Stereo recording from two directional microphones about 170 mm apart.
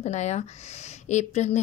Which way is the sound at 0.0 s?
45° left (ahead or behind).